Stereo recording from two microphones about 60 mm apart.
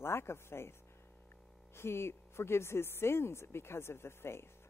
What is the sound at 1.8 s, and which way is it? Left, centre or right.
A woman's voice, left.